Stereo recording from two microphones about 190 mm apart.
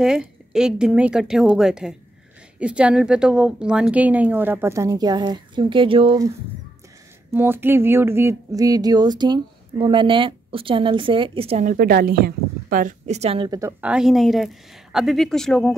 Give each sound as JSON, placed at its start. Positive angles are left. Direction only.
{"t": 0.0, "sound": "a woman's voice", "side_deg": -5}
{"t": 7.3, "sound": "speech", "side_deg": -10}
{"t": 13.6, "sound": "a woman's voice", "side_deg": -10}